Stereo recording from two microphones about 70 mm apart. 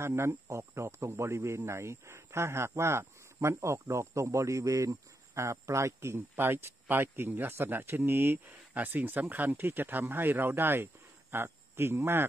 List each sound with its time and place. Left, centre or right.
0.0 s speech: right